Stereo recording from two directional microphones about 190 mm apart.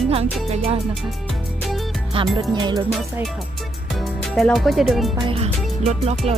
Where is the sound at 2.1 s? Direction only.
30° right (ahead or behind).